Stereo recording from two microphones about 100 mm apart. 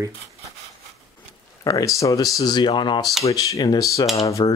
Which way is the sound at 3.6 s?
35° left (ahead or behind).